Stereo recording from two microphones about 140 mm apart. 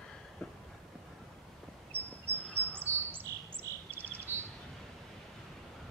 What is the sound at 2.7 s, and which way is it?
Bird, 15° right (ahead or behind).